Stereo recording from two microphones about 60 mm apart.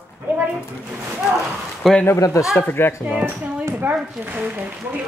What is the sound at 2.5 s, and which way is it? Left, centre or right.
Speech, left.